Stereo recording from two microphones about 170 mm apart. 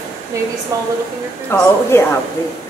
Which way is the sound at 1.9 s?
15° left (ahead or behind).